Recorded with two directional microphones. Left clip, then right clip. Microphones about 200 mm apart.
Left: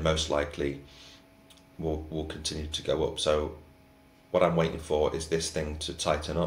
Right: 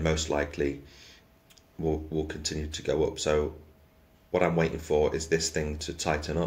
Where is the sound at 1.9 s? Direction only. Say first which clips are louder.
Right 3 dB; 40° right (ahead or behind).